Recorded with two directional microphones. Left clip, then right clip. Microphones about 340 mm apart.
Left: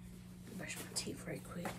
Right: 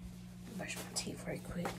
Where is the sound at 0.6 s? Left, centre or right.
Centre.